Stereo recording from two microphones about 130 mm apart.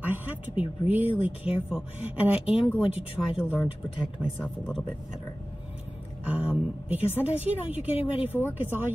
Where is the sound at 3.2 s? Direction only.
5° left (ahead or behind).